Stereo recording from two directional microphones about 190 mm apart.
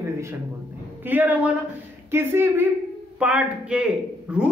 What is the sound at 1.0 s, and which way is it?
Speech, 10° right (ahead or behind).